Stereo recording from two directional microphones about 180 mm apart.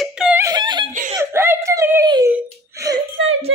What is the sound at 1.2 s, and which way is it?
Whimper, 15° right (ahead or behind).